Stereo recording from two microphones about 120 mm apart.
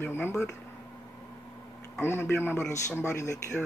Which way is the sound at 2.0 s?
20° left (ahead or behind).